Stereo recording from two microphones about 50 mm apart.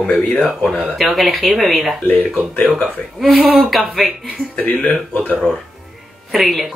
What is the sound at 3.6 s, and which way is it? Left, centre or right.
Speech, centre.